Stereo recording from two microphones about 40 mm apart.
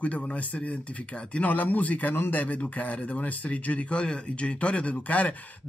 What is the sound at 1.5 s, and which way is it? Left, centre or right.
Speech, left.